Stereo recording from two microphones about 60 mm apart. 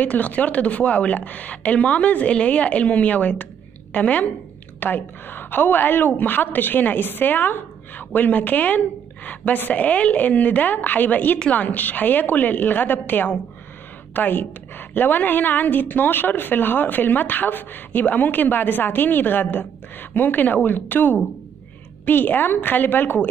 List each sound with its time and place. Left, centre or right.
0.0 s a woman's voice: left